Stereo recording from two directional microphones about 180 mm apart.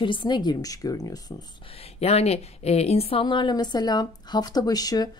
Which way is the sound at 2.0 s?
35° left (ahead or behind).